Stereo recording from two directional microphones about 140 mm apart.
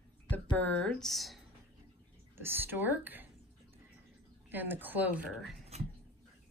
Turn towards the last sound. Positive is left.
turn(degrees=-50)  # may be behind; listen again after turning